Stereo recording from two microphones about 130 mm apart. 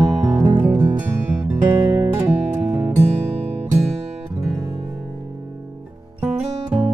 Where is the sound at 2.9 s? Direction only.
55° right (ahead or behind).